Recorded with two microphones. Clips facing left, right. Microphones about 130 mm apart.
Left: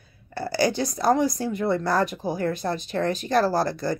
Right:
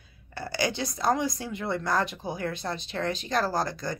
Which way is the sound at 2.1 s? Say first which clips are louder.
Left 6 dB; 40° left (ahead or behind).